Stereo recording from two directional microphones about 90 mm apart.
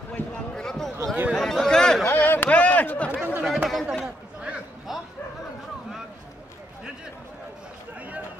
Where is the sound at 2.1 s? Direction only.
20° left (ahead or behind).